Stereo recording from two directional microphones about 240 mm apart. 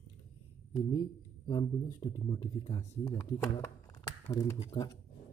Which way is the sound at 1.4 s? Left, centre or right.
Centre.